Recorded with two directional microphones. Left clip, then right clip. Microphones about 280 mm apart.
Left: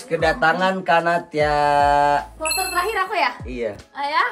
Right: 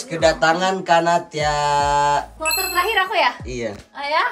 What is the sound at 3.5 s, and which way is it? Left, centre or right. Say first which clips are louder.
Speech: left 1 dB; right.